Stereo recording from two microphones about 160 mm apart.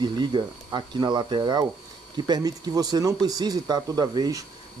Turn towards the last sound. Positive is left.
turn(degrees=-25)  # may be behind; listen again after turning